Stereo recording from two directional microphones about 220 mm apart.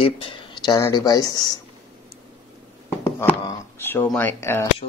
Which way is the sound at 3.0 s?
10° left (ahead or behind).